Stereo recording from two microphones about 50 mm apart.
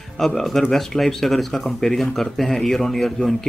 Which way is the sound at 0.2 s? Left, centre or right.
Centre.